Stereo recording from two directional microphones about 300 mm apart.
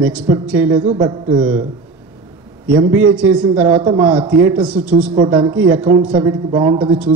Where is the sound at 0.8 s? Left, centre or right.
Centre.